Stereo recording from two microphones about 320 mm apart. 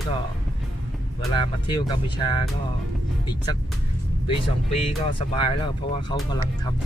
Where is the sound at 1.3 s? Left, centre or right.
Centre.